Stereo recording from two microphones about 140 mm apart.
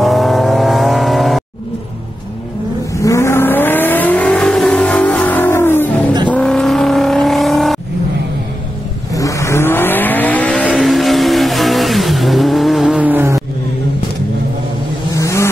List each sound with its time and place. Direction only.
0.0 s vehicle: centre (ahead or behind)
2.9 s vehicle: 20° left (ahead or behind); by 7.8 s centre (ahead or behind)
9.1 s vehicle: 25° left (ahead or behind)
10.7 s vehicle: centre (ahead or behind)
15.1 s vehicle: 20° left (ahead or behind)